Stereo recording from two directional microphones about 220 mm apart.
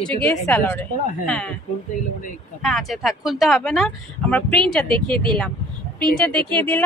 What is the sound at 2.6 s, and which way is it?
Speech, centre (ahead or behind).